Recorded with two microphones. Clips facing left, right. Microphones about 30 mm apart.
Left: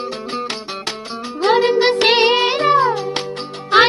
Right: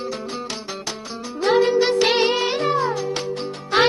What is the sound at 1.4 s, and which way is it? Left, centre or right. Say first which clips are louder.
Music: left 3 dB; left.